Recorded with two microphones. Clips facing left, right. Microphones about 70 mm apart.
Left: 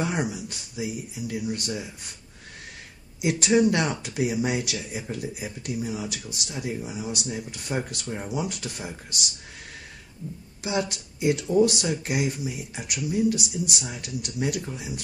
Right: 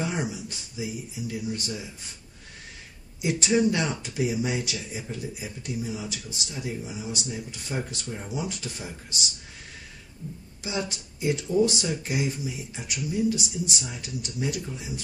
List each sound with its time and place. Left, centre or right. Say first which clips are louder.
0.0 s speech: left 2 dB; left
3.2 s speech: left 3 dB; left
10.6 s speech: left 4 dB; left